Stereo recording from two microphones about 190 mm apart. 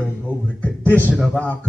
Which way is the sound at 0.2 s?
10° left (ahead or behind).